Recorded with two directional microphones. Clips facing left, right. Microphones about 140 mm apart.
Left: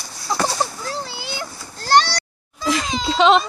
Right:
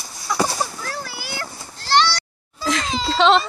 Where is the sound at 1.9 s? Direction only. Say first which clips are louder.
Left 2 dB; 45° left (ahead or behind).